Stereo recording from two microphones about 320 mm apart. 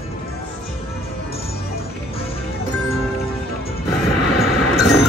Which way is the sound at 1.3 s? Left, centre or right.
Centre.